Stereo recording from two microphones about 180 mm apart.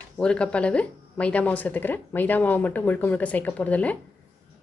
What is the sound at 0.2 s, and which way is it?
Speech, 5° left (ahead or behind).